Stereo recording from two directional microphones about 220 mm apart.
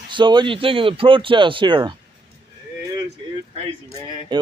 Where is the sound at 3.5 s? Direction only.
30° right (ahead or behind).